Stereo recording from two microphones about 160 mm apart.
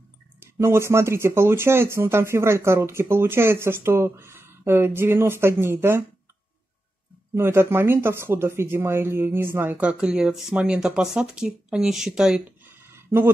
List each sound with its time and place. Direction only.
0.4 s speech: 15° right (ahead or behind)
7.3 s speech: 15° right (ahead or behind)